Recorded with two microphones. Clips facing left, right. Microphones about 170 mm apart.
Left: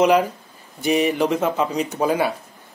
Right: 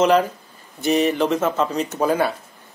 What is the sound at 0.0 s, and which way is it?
Speech, 10° left (ahead or behind).